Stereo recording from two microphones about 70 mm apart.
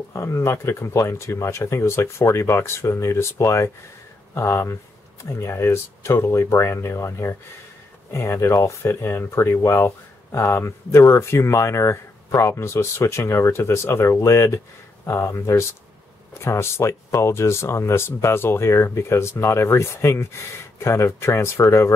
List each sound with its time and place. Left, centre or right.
0.1 s speech: left